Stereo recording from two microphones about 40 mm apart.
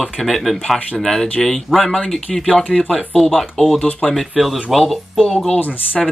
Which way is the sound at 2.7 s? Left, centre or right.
Centre.